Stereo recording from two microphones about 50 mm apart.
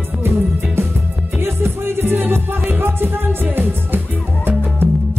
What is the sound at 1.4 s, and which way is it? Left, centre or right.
Music, right.